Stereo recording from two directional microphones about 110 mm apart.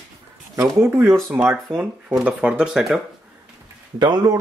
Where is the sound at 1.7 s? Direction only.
15° right (ahead or behind).